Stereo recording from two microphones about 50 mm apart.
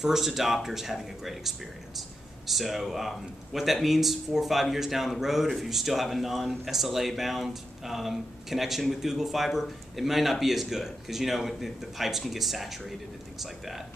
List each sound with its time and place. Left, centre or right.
0.0 s speech: centre